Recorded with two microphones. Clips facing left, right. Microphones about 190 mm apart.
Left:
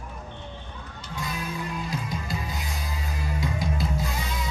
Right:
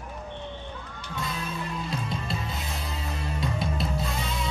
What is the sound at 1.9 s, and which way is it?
Music, 25° right (ahead or behind).